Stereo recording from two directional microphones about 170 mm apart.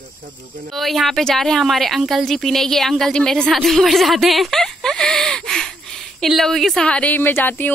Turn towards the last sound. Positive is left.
turn(degrees=10)  # may be behind; listen again after turning